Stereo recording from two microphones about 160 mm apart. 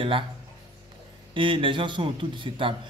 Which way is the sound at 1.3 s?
30° right (ahead or behind).